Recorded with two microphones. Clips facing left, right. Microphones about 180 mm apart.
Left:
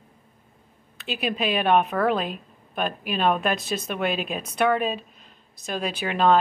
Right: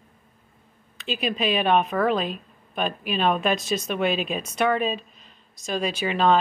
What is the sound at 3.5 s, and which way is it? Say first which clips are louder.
Speech: right 2 dB; 60° left (ahead or behind).